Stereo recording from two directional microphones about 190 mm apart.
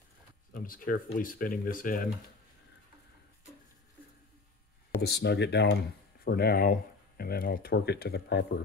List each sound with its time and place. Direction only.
0.5 s speech: 45° left (ahead or behind)
5.0 s speech: 60° left (ahead or behind)